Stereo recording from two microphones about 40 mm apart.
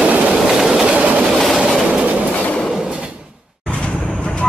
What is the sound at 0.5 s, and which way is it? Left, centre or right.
Train, centre.